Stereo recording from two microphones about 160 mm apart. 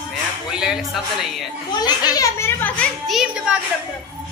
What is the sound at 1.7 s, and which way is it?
A child's voice, 25° left (ahead or behind).